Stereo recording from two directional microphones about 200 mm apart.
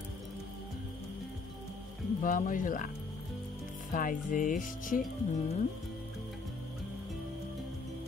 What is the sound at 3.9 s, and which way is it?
Music, 40° left (ahead or behind).